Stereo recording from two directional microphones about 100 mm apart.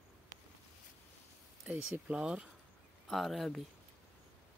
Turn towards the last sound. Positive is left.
turn(degrees=0)  # may be behind; listen again after turning